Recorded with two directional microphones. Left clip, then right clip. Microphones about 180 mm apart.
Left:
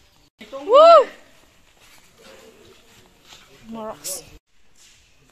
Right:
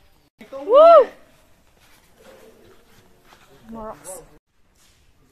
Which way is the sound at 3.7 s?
15° left (ahead or behind).